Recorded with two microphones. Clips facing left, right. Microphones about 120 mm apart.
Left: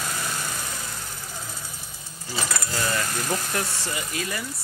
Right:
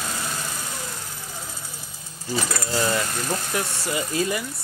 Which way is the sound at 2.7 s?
25° right (ahead or behind).